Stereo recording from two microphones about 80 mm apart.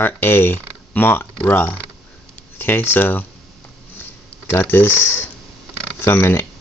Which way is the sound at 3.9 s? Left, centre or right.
Left.